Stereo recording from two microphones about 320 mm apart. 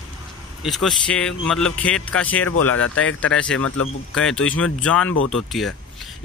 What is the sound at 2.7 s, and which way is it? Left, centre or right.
Speech, left.